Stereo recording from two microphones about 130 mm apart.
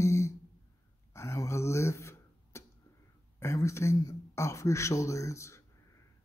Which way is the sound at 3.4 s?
20° left (ahead or behind).